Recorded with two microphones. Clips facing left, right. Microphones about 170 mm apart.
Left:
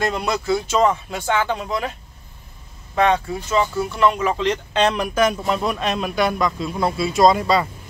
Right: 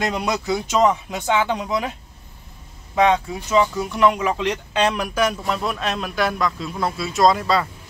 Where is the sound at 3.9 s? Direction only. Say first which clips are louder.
Right 1 dB; 10° right (ahead or behind).